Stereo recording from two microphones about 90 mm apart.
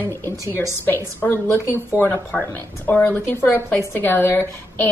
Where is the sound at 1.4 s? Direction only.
20° left (ahead or behind).